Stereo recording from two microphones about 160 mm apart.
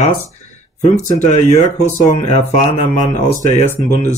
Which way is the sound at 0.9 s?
45° left (ahead or behind).